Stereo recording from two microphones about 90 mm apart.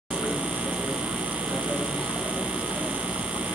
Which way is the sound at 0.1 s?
10° right (ahead or behind).